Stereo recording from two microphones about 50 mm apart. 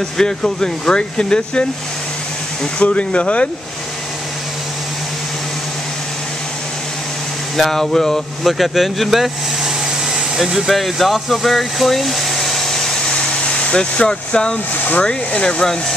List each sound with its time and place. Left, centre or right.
0.2 s speech: centre
2.8 s speech: left
7.5 s speech: centre
10.1 s a sound: centre
15.0 s speech: centre